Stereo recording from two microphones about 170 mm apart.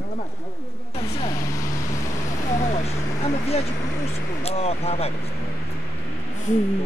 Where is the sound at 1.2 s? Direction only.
20° left (ahead or behind).